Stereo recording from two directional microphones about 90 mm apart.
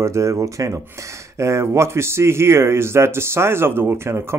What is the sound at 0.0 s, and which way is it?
Speech, 35° right (ahead or behind).